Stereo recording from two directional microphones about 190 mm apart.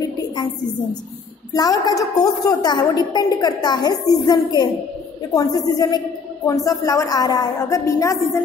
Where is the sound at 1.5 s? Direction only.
20° left (ahead or behind).